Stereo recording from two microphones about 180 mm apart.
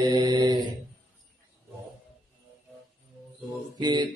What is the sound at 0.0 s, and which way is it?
Mantra, 20° right (ahead or behind).